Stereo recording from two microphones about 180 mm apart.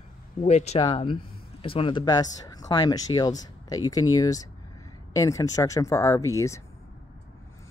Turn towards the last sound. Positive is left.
turn(degrees=15)  # may be behind; listen again after turning